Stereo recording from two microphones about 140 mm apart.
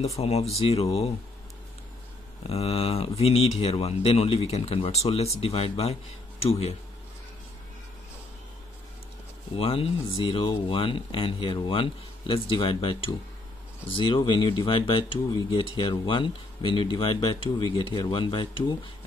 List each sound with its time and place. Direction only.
0.0 s speech: 50° left (ahead or behind)
2.4 s speech: 45° left (ahead or behind)
9.6 s speech: 40° left (ahead or behind)